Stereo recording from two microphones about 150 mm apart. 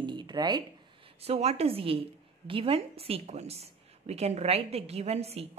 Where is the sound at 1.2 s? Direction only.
45° right (ahead or behind).